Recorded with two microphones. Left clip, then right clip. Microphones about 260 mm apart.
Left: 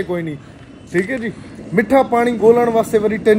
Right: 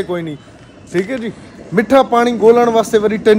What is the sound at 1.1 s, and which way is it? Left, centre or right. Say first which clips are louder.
Speech: right 1 dB; centre.